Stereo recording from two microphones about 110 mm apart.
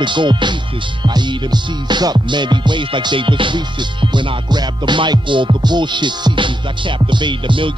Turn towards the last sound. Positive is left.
turn(degrees=-50)  # may be behind; listen again after turning